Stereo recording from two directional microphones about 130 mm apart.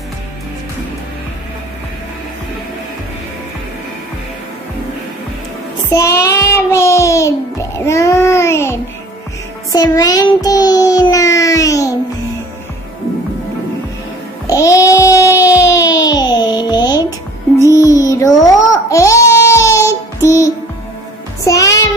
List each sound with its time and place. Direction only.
5.9 s child singing: 25° left (ahead or behind)
14.5 s music: 25° left (ahead or behind)
14.9 s a sound: 25° left (ahead or behind)
15.4 s music: 25° left (ahead or behind)
17.6 s a sound: 25° left (ahead or behind)
20.2 s music: 25° left (ahead or behind)